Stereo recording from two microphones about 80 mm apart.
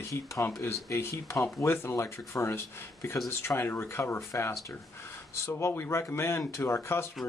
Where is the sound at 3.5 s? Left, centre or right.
Left.